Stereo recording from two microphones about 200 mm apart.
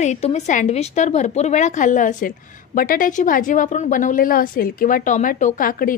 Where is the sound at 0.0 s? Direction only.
35° left (ahead or behind).